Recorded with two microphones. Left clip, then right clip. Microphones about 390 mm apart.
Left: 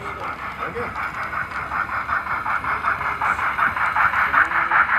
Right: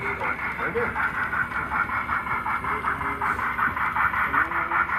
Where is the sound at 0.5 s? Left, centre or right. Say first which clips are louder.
Right 1 dB; centre.